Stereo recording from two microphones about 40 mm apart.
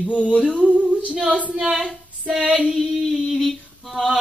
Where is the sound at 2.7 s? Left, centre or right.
Centre.